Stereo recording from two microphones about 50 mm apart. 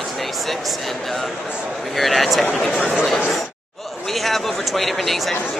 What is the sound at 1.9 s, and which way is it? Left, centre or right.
Speech, centre.